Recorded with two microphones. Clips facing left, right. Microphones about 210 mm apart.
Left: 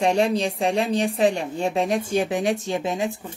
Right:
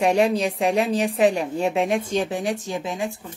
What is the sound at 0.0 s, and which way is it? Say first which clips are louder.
Speech: right 1 dB; 30° left (ahead or behind).